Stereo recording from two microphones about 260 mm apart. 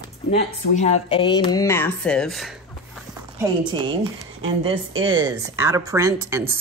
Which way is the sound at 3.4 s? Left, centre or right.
Centre.